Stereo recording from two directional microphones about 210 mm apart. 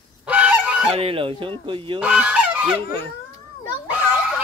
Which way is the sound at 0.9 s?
25° right (ahead or behind).